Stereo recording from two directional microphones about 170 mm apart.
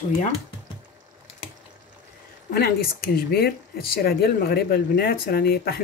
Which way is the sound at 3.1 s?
65° left (ahead or behind).